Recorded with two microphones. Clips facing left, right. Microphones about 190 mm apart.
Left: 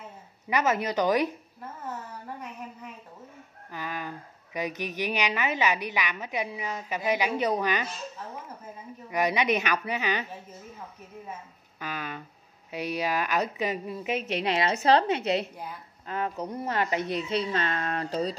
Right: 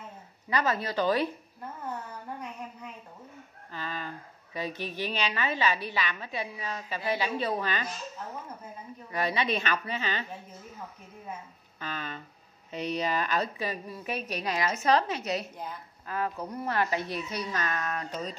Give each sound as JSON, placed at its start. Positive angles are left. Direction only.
{"t": 0.5, "sound": "a woman's voice", "side_deg": 20}
{"t": 3.7, "sound": "a sound", "side_deg": 15}
{"t": 4.6, "sound": "a woman's voice", "side_deg": 15}
{"t": 9.1, "sound": "a woman's voice", "side_deg": 15}
{"t": 11.8, "sound": "a woman's voice", "side_deg": 10}
{"t": 15.5, "sound": "a woman's voice", "side_deg": 10}
{"t": 16.1, "sound": "a woman's voice", "side_deg": 20}